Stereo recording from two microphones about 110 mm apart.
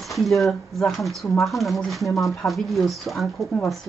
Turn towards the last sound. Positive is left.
turn(degrees=0)  # may be behind; listen again after turning